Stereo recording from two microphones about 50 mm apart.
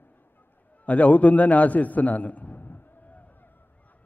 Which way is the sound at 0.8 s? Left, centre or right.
Left.